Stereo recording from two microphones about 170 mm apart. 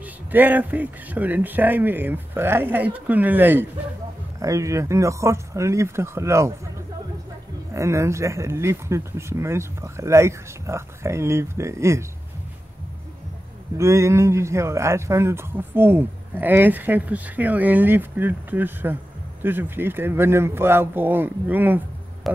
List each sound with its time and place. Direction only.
0.3 s a man's voice: 10° right (ahead or behind)
7.7 s a man's voice: 15° right (ahead or behind)
13.7 s a man's voice: 15° right (ahead or behind)